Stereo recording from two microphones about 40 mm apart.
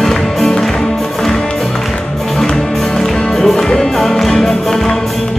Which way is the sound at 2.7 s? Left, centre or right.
Centre.